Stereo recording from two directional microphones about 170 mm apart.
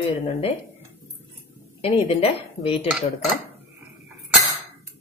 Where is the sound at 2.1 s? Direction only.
35° left (ahead or behind).